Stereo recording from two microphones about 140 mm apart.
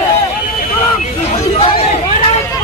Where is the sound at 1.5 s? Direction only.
45° left (ahead or behind).